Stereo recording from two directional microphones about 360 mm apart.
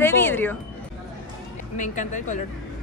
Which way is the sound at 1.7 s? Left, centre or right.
Left.